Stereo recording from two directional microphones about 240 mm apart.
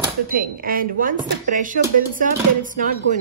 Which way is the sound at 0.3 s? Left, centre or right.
Right.